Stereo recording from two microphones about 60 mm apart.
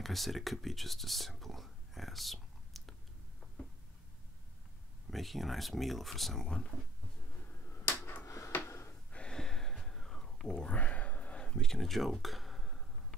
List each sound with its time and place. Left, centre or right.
0.0 s speech: centre
5.1 s speech: centre
7.3 s finger snapping: left
8.6 s gasp: left
9.1 s a sound: centre